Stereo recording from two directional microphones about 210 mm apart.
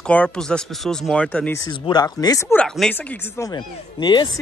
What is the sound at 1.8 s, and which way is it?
Speech, 20° left (ahead or behind).